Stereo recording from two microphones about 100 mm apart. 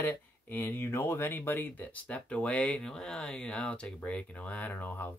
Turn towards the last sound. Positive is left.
turn(degrees=15)  # may be behind; listen again after turning